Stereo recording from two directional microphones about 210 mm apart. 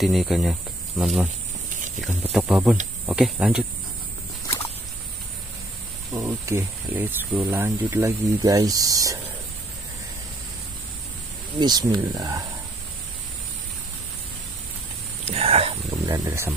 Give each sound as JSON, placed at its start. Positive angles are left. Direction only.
{"t": 0.0, "sound": "speech", "side_deg": 0}
{"t": 2.3, "sound": "speech", "side_deg": -5}
{"t": 6.1, "sound": "speech", "side_deg": -15}
{"t": 11.6, "sound": "speech", "side_deg": -20}
{"t": 15.2, "sound": "a sound", "side_deg": -30}
{"t": 15.9, "sound": "speech", "side_deg": -15}